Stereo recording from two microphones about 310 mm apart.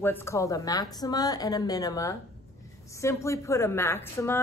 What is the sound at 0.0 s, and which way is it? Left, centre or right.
A woman's voice, centre.